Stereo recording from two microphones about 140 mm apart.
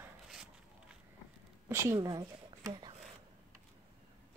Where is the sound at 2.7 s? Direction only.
40° right (ahead or behind).